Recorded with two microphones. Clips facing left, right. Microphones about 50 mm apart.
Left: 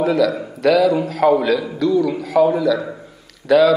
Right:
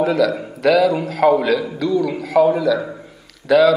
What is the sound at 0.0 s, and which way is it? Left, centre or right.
A man's voice, centre.